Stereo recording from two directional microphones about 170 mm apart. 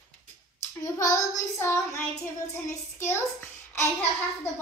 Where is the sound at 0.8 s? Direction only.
20° left (ahead or behind).